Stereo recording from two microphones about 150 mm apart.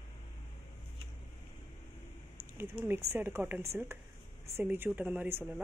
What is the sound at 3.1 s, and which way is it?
Speech, 15° right (ahead or behind).